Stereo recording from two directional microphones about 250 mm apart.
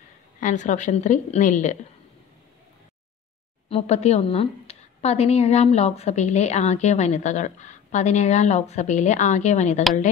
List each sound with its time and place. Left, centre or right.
0.4 s a woman's voice: left
3.6 s a woman's voice: left